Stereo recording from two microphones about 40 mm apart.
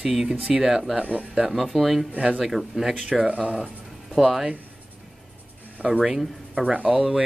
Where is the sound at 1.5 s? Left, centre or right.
Centre.